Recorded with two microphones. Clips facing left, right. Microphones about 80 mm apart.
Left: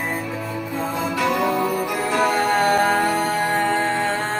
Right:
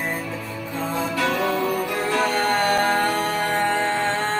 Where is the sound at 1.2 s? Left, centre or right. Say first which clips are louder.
Left 3 dB; centre.